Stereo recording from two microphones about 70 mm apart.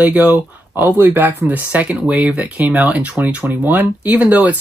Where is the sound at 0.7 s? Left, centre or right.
Right.